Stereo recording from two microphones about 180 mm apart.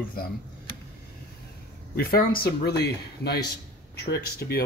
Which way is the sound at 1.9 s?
55° left (ahead or behind).